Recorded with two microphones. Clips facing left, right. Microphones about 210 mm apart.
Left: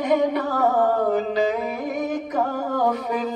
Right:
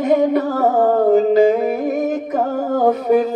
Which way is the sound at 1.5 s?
50° right (ahead or behind).